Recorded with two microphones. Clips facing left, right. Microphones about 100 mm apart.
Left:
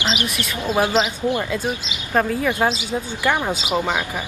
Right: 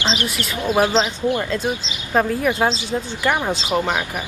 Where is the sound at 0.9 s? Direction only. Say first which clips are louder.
Right 1 dB; 15° left (ahead or behind).